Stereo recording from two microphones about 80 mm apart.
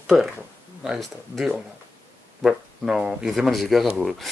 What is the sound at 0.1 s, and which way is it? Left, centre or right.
Speech, centre.